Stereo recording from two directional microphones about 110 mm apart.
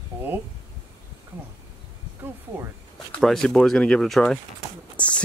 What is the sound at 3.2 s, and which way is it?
Speech, 5° left (ahead or behind).